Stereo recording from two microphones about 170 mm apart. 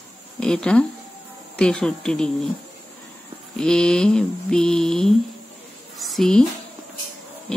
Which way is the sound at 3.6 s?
5° left (ahead or behind).